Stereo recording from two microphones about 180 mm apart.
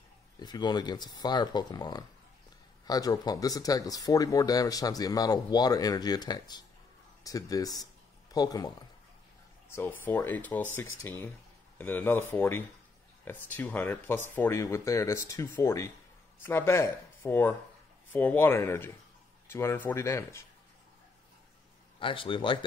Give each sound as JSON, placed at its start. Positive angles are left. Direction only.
{"t": 0.4, "sound": "speech", "side_deg": 25}
{"t": 7.8, "sound": "a sound", "side_deg": 20}
{"t": 9.8, "sound": "speech", "side_deg": 10}
{"t": 22.0, "sound": "speech", "side_deg": 30}